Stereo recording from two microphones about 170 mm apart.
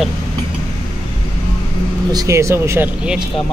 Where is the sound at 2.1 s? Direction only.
15° right (ahead or behind).